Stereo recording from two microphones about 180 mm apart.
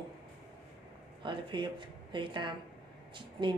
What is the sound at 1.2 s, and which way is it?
Speech, 25° right (ahead or behind).